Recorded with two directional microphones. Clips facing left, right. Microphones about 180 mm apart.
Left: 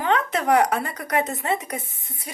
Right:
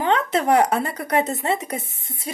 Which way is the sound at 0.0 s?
30° right (ahead or behind).